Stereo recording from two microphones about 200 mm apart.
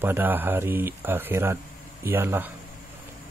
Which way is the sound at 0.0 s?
10° right (ahead or behind).